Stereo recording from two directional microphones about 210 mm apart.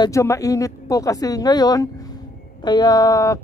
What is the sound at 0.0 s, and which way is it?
A man's voice, 15° left (ahead or behind).